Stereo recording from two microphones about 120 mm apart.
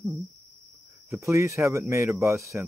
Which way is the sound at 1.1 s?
25° right (ahead or behind).